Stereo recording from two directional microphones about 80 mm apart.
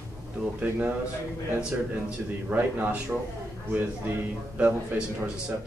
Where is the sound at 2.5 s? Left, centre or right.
Right.